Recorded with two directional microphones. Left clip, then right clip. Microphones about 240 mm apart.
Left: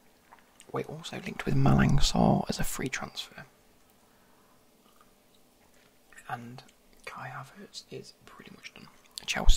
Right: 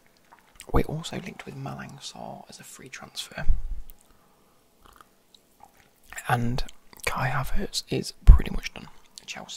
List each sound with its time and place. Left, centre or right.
0.6 s speech: right
1.3 s speech: centre
3.1 s speech: centre
6.0 s speech: right
9.1 s whispering: centre